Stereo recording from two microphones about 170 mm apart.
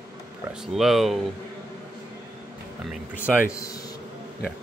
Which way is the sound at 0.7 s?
Centre (ahead or behind).